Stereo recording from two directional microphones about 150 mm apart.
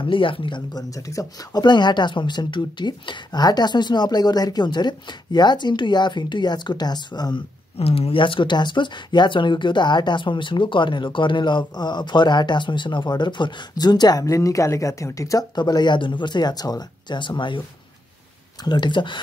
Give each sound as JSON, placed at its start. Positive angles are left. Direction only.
{"t": 0.0, "sound": "speech", "side_deg": 35}
{"t": 7.8, "sound": "speech", "side_deg": 40}
{"t": 18.6, "sound": "speech", "side_deg": 30}